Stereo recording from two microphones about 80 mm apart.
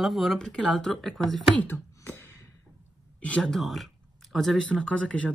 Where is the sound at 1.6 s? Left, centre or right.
Left.